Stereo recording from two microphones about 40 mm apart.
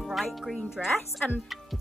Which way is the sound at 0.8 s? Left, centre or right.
Centre.